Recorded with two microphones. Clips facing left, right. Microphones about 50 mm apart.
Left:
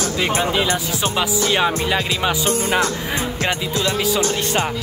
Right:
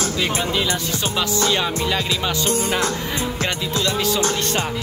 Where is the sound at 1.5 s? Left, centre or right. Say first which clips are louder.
Left 3 dB; left.